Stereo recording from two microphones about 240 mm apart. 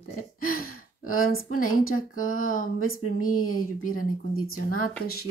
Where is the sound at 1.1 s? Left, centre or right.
Left.